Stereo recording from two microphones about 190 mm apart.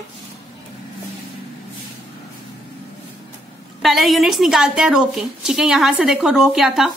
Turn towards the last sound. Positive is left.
turn(degrees=0)  # may be behind; listen again after turning